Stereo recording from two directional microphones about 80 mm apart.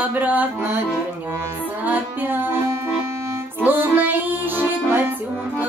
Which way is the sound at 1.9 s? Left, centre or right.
Right.